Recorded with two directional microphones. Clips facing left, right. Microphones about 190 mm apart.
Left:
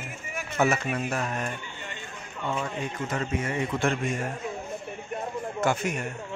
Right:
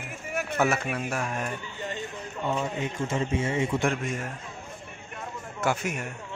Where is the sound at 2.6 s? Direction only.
20° right (ahead or behind).